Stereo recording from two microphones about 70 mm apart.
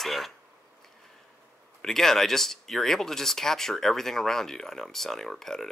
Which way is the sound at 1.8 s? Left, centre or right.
Centre.